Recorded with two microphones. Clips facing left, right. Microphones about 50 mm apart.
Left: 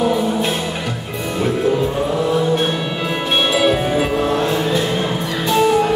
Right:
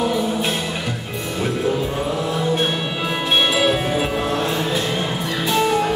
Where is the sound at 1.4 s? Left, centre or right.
Centre.